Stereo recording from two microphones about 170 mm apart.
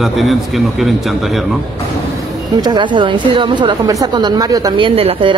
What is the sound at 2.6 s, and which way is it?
A woman's voice, 25° right (ahead or behind).